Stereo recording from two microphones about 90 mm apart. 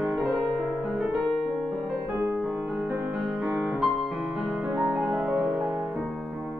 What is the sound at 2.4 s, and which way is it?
Music, 15° right (ahead or behind).